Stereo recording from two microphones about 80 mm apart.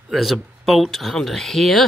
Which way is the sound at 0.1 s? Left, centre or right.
Centre.